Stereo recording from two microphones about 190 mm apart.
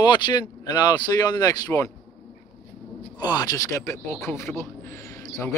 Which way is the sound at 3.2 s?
20° left (ahead or behind).